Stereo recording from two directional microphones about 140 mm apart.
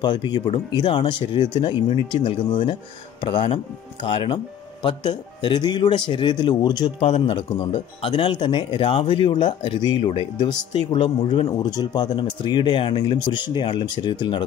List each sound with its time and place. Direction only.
0.0 s speech: 30° left (ahead or behind)